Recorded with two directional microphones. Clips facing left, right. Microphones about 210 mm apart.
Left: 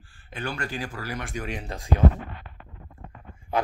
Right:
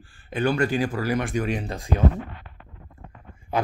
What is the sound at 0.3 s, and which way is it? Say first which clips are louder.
Speech: right 10 dB; 15° right (ahead or behind).